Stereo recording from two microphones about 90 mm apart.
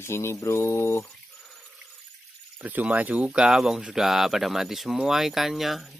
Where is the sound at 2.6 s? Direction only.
20° right (ahead or behind).